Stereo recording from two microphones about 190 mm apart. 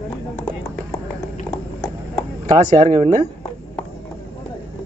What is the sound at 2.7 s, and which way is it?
Speech, 25° right (ahead or behind).